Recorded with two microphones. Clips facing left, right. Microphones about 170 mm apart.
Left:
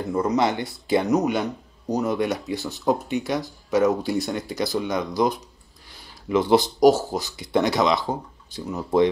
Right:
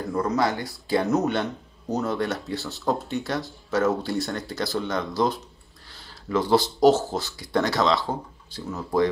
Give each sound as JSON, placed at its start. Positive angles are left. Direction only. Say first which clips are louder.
{"t": 0.0, "sound": "speech", "louder": "left 2 dB", "side_deg": 20}